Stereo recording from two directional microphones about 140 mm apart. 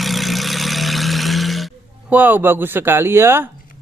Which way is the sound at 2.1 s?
10° right (ahead or behind).